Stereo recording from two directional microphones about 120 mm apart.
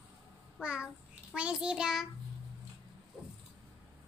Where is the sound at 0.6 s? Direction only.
10° right (ahead or behind).